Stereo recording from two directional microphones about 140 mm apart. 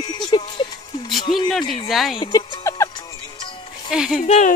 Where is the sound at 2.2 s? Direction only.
25° left (ahead or behind).